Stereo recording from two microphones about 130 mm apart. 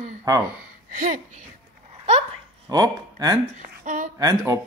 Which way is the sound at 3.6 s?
85° right.